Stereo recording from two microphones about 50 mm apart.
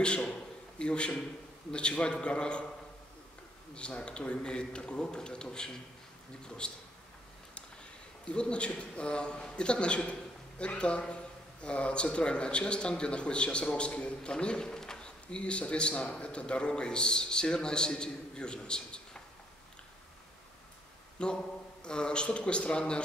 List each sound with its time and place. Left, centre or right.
0.0 s a man's voice: centre
3.7 s a man's voice: left
8.3 s a man's voice: left
21.2 s a man's voice: centre